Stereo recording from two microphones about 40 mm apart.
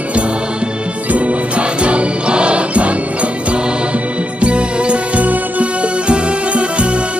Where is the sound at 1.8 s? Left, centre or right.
Right.